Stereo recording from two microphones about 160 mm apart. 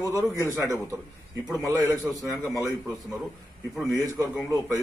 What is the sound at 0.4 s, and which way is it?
A man's voice, 20° right (ahead or behind).